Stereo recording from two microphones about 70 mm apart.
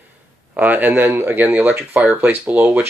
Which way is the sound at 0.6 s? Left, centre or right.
Right.